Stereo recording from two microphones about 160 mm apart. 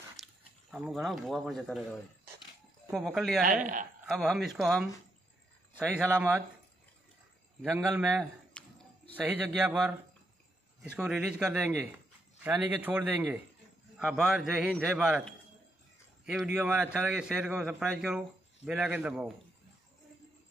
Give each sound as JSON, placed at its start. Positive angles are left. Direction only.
{"t": 0.2, "sound": "speech", "side_deg": 0}
{"t": 2.9, "sound": "a man's voice", "side_deg": 0}
{"t": 3.4, "sound": "speech", "side_deg": -55}
{"t": 4.1, "sound": "a man's voice", "side_deg": 0}
{"t": 7.7, "sound": "a man's voice", "side_deg": -20}
{"t": 8.1, "sound": "a man's voice", "side_deg": 0}
{"t": 16.3, "sound": "a man's voice", "side_deg": -5}